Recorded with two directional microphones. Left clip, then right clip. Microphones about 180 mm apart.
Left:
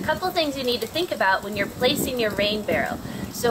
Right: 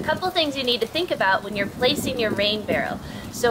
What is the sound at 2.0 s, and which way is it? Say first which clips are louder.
Speech: right 1 dB; 25° right (ahead or behind).